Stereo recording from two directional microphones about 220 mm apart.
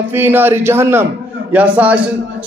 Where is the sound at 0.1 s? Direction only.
10° right (ahead or behind).